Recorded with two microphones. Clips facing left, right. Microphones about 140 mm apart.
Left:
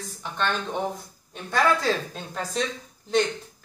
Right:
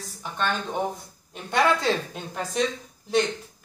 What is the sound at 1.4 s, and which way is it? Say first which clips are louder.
A woman's voice: even; 25° right (ahead or behind).